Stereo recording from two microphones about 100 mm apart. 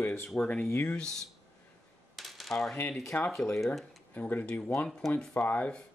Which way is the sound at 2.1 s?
Centre (ahead or behind).